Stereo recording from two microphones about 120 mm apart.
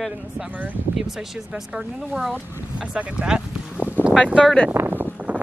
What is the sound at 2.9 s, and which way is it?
Speech, 10° right (ahead or behind).